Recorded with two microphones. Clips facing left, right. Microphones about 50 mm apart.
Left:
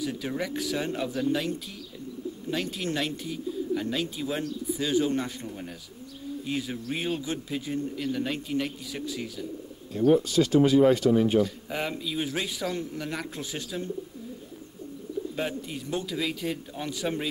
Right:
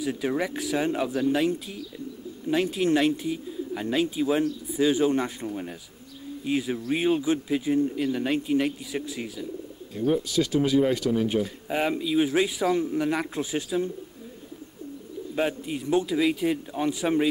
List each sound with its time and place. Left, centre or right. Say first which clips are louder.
0.0 s speech: right 4 dB; centre
2.5 s speech: right 8 dB; centre
10.8 s speech: left 3 dB; centre
11.3 s speech: left 1 dB; centre
15.3 s speech: right 10 dB; centre